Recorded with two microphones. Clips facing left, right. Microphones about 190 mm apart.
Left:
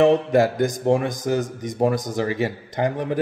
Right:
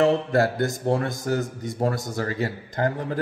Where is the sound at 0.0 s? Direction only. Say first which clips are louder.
Left 4 dB; 15° left (ahead or behind).